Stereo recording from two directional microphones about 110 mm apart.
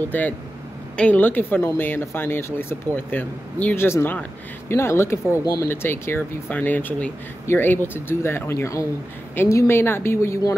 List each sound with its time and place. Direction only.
0.0 s speech: 15° left (ahead or behind)